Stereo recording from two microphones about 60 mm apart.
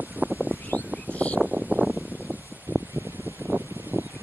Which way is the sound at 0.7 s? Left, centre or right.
Right.